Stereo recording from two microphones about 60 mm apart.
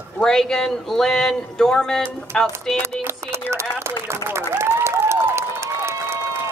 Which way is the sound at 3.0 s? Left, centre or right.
Right.